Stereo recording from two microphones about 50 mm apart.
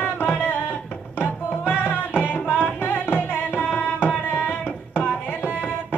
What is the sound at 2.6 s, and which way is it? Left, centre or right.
Tabla, left.